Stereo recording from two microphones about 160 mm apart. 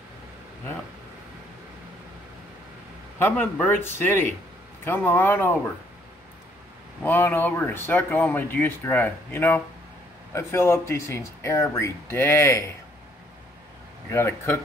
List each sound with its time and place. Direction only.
3.2 s speech: 10° left (ahead or behind)
7.0 s speech: 10° left (ahead or behind)
14.1 s speech: 15° left (ahead or behind)